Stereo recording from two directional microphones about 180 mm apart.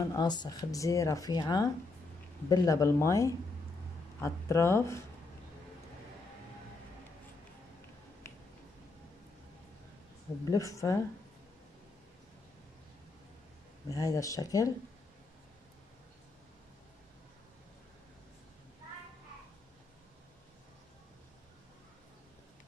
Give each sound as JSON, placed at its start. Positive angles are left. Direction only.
{"t": 0.1, "sound": "speech", "side_deg": 25}
{"t": 10.5, "sound": "speech", "side_deg": 20}
{"t": 13.8, "sound": "speech", "side_deg": 20}